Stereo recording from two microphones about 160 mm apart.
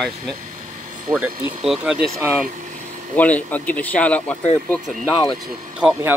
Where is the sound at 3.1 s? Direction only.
10° left (ahead or behind).